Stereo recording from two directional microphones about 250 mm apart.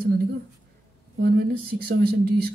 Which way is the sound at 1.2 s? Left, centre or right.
Right.